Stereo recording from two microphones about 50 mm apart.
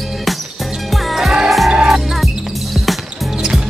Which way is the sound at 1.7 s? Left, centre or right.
Centre.